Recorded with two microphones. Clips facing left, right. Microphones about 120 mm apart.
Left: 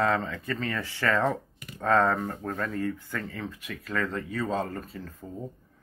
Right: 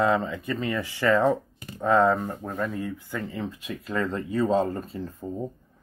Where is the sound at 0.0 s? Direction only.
15° right (ahead or behind).